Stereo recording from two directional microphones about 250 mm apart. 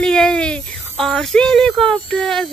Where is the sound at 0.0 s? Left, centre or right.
Centre.